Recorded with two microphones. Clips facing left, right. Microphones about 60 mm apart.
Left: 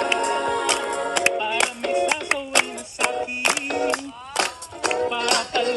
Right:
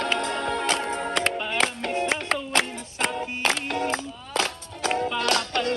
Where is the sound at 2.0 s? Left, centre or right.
Left.